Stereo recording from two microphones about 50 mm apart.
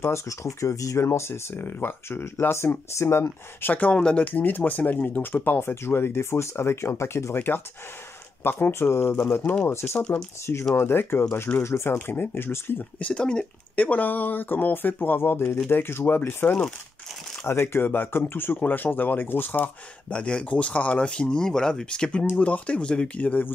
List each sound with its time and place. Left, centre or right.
0.0 s speech: left
2.5 s speech: left
3.9 s speech: left
4.2 s speech: left
7.3 s speech: left
9.9 s speech: centre
10.7 s speech: left
11.6 s speech: left
13.0 s speech: left
13.7 s speech: left
20.1 s speech: left